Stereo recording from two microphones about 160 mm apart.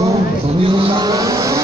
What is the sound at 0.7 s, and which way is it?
Vehicle, 30° right (ahead or behind).